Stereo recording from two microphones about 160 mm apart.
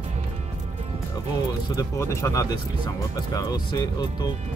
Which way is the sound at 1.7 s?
20° left (ahead or behind).